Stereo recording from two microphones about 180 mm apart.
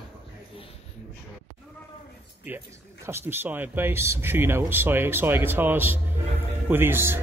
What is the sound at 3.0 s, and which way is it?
Speech, 10° right (ahead or behind).